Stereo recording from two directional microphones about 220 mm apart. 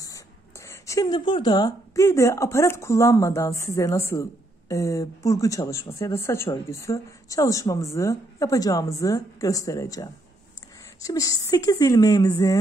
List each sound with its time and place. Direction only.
0.0 s speech: 15° left (ahead or behind)